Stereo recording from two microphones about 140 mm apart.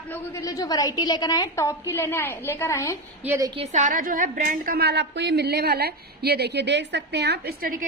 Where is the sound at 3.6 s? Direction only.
55° right (ahead or behind); by 4.8 s 75° right (ahead or behind).